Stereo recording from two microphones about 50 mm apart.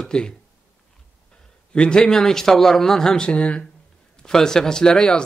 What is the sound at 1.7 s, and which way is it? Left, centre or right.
A man's voice, centre.